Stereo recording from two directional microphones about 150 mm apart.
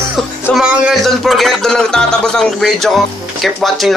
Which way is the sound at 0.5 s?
5° right (ahead or behind).